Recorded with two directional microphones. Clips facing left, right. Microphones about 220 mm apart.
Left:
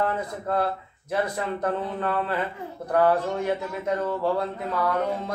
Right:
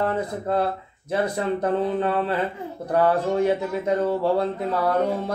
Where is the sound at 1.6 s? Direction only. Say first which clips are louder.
Right 5 dB; 25° right (ahead or behind).